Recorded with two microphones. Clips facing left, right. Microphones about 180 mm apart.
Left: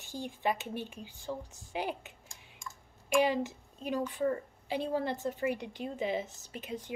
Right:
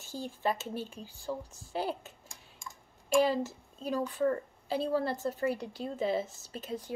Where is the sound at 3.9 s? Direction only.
40° right (ahead or behind).